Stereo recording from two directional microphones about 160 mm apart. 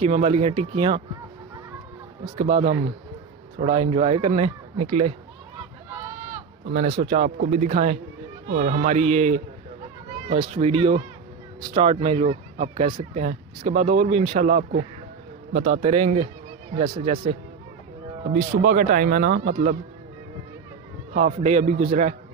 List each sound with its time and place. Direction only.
0.0 s speech: 40° right (ahead or behind)
2.4 s speech: 45° right (ahead or behind)
7.0 s speech: 45° right (ahead or behind)
18.3 s speech: 60° right (ahead or behind)
21.4 s speech: 45° right (ahead or behind)